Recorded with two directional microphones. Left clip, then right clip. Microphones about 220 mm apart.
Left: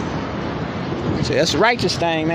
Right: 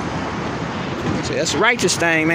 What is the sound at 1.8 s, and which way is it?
Speech, 5° right (ahead or behind).